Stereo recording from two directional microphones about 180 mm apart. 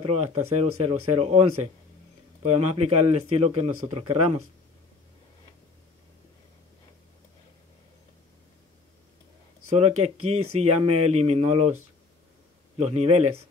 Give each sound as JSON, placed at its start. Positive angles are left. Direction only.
{"t": 0.0, "sound": "speech", "side_deg": -35}
{"t": 2.4, "sound": "speech", "side_deg": -35}
{"t": 9.8, "sound": "speech", "side_deg": -35}
{"t": 12.7, "sound": "speech", "side_deg": -35}